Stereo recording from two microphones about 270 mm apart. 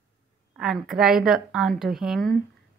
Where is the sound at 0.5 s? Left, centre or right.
Centre.